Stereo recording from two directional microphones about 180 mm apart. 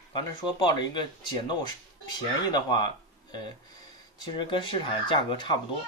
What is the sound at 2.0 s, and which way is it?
Speech, 25° left (ahead or behind).